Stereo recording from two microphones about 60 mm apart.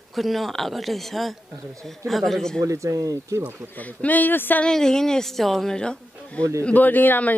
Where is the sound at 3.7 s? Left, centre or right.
Left.